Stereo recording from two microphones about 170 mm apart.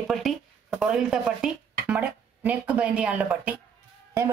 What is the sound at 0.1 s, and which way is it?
A woman's voice, centre (ahead or behind).